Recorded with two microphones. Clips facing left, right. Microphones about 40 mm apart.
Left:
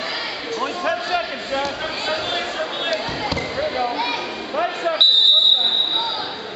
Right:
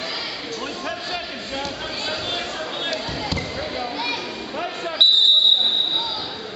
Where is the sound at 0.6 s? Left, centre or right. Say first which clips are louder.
Left 9 dB; centre.